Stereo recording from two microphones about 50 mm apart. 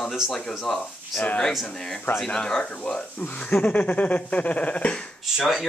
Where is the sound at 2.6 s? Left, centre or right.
Left.